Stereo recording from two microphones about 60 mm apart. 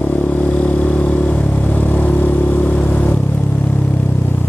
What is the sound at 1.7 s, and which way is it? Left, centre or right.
Vehicle, left.